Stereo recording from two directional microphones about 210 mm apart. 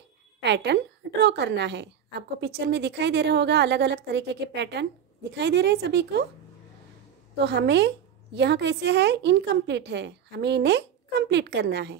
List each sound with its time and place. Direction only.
0.4 s a woman's voice: 55° right (ahead or behind)
7.3 s a woman's voice: 55° right (ahead or behind)